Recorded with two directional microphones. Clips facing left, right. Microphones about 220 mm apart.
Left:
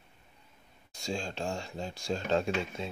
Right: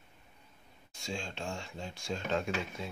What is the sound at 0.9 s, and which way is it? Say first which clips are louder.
Speech: left 4 dB; 40° left (ahead or behind).